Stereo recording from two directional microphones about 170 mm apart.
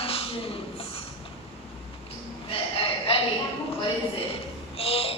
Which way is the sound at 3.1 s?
35° left (ahead or behind).